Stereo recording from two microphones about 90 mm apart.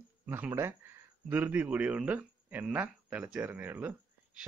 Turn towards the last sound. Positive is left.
turn(degrees=-15)  # may be behind; listen again after turning